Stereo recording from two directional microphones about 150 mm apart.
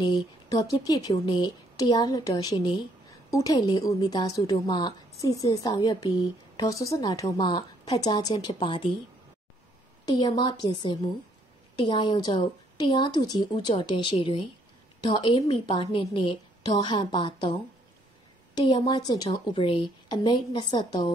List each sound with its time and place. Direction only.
0.0 s a woman's voice: 30° left (ahead or behind)
10.0 s a woman's voice: 30° left (ahead or behind)
18.9 s a woman's voice: 30° left (ahead or behind)